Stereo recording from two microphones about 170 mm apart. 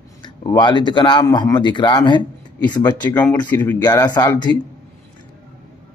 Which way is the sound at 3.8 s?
20° left (ahead or behind).